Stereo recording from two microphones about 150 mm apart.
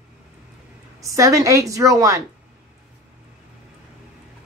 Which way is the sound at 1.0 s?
20° right (ahead or behind).